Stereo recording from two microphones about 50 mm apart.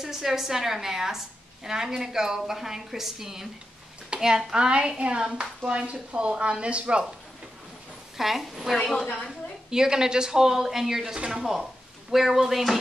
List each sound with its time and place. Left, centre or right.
0.0 s a woman's voice: centre; by 7.1 s right
8.2 s a woman's voice: centre